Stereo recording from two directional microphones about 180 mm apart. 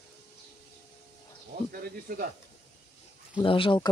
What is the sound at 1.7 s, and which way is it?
Speech, 55° right (ahead or behind).